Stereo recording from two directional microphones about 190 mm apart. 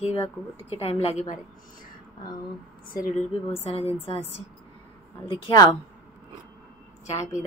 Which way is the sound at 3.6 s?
30° left (ahead or behind).